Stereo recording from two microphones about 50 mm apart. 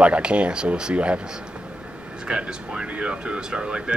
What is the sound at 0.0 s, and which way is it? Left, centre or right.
Speech, right.